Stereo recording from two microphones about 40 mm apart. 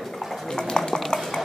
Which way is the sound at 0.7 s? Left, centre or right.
Centre.